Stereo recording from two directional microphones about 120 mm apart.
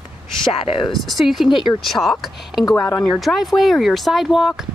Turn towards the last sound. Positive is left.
turn(degrees=0)  # may be behind; listen again after turning